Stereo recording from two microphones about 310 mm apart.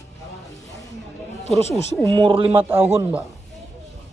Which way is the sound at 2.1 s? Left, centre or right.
Centre.